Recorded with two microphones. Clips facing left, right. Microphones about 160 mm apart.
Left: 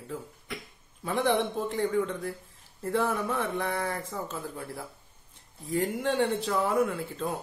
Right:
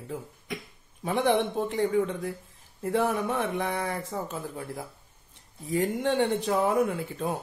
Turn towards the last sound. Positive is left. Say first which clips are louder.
# right 1 dB
turn(degrees=-15)  # may be behind; listen again after turning